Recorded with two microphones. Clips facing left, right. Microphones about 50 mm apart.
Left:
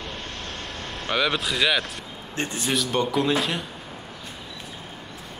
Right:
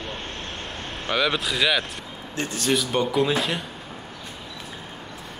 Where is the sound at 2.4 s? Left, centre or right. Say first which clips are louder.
Even; left.